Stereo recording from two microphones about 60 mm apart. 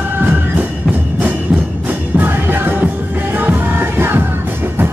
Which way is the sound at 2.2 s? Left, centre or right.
Right.